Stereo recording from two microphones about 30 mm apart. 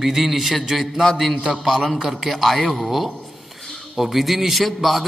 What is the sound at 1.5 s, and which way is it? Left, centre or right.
Speech, centre.